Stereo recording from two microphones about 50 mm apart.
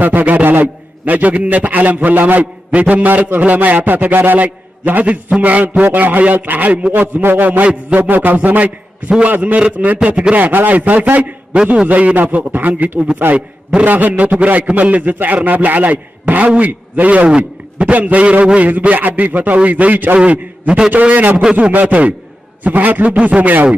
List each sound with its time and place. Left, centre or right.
0.0 s a man's voice: right
6.9 s a man's voice: right
11.5 s a man's voice: centre
11.9 s a man's voice: right
13.8 s a man's voice: right
20.2 s a man's voice: right